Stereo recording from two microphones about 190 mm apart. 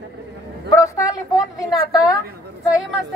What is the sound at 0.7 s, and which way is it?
Speech, 15° left (ahead or behind).